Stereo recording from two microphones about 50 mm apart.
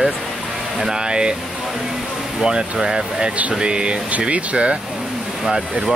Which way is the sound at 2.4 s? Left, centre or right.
Centre.